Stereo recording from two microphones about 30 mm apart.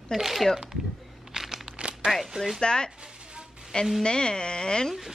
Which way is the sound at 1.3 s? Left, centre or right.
Centre.